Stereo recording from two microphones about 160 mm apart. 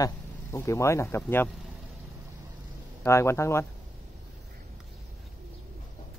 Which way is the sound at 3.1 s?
15° left (ahead or behind).